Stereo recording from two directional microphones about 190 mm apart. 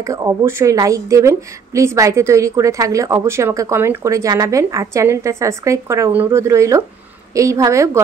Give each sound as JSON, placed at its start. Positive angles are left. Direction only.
{"t": 0.0, "sound": "a woman's voice", "side_deg": -15}